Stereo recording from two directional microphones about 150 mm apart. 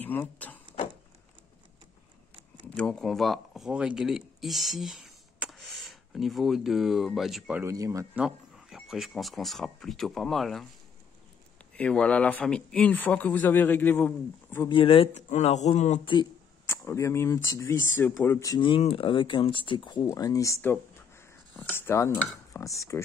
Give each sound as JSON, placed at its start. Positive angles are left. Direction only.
{"t": 0.0, "sound": "speech", "side_deg": 10}
{"t": 2.6, "sound": "speech", "side_deg": 5}
{"t": 7.6, "sound": "speech", "side_deg": -20}
{"t": 8.1, "sound": "speech", "side_deg": -5}
{"t": 11.7, "sound": "speech", "side_deg": 5}
{"t": 14.7, "sound": "speech", "side_deg": 35}
{"t": 15.2, "sound": "speech", "side_deg": 50}
{"t": 16.6, "sound": "speech", "side_deg": 15}
{"t": 18.6, "sound": "speech", "side_deg": 40}